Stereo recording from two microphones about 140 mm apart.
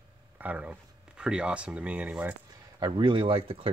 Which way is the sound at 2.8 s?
35° right (ahead or behind).